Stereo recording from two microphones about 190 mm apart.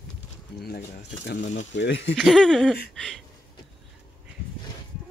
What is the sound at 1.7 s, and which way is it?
Speech, 70° left (ahead or behind).